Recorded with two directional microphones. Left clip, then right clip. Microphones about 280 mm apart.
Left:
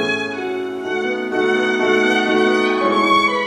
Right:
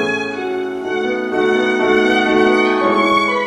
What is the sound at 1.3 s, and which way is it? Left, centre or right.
Music, centre.